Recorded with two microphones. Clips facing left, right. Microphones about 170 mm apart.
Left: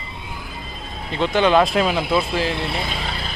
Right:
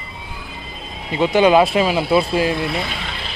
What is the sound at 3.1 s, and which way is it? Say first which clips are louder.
Vehicle: left 2 dB; 40° left (ahead or behind).